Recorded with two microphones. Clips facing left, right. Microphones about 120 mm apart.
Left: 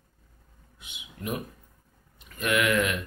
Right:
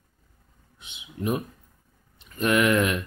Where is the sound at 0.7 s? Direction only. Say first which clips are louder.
Right 8 dB; 30° right (ahead or behind).